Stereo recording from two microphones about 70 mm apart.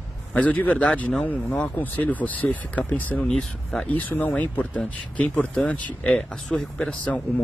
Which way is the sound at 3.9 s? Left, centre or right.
Left.